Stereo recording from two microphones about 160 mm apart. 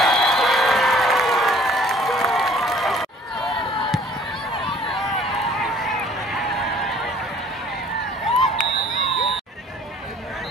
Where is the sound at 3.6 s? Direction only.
35° left (ahead or behind).